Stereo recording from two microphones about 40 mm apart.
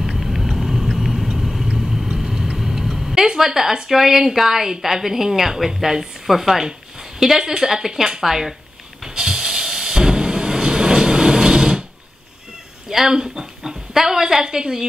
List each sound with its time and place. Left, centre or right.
0.0 s vehicle: centre
3.3 s a woman's voice: centre
9.1 s a sound: centre
12.9 s a woman's voice: centre